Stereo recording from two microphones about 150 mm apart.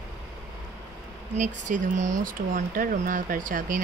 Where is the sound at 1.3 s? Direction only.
55° right (ahead or behind).